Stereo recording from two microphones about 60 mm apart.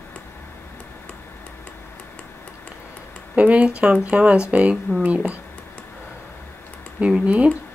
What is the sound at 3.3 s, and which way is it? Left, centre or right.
Speech, right.